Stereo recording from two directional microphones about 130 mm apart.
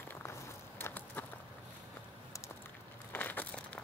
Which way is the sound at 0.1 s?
15° left (ahead or behind).